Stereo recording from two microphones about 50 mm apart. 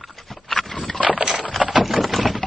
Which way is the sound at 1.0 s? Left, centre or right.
Right.